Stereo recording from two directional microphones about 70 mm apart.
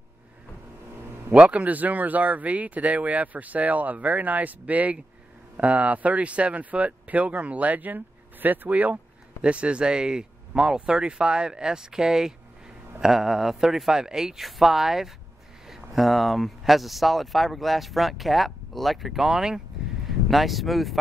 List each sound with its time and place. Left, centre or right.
1.3 s speech: centre